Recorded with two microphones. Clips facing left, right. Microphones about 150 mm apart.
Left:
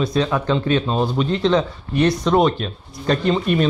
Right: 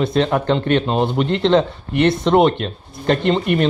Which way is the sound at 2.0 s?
25° right (ahead or behind).